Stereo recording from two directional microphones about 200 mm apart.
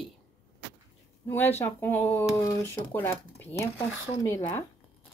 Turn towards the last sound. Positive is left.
turn(degrees=15)  # may be behind; listen again after turning